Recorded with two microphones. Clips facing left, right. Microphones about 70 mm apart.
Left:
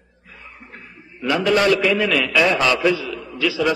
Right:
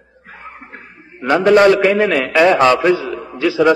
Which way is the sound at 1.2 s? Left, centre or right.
Right.